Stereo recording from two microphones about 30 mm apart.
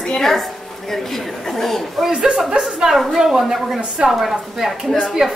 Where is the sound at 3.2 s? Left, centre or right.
Centre.